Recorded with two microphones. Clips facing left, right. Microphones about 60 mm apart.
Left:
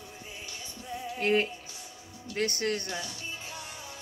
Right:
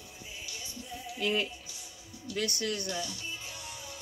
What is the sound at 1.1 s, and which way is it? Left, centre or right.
Speech, left.